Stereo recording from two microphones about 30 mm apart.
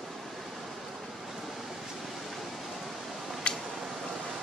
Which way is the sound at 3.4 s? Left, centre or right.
Left.